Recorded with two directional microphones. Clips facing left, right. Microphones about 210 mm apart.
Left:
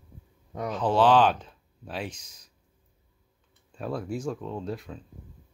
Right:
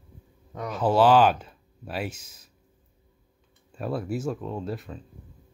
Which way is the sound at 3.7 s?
5° right (ahead or behind).